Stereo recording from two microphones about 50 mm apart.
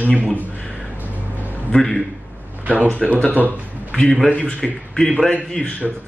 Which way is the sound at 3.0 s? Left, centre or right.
Centre.